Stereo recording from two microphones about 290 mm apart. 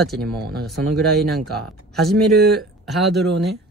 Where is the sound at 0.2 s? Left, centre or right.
Right.